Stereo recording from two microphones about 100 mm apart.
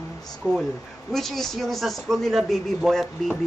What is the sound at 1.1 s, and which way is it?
A woman's voice, 5° left (ahead or behind).